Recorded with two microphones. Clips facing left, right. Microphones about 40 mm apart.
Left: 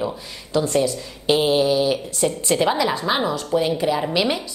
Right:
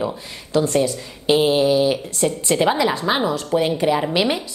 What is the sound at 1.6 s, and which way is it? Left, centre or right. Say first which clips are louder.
Mantra: right 2 dB; right.